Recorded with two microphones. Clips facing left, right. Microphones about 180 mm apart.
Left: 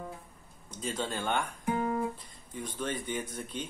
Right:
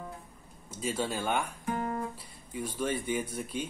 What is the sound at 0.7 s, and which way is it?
Speech, 10° right (ahead or behind).